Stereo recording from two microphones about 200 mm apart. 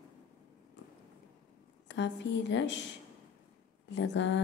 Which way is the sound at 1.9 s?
60° left (ahead or behind).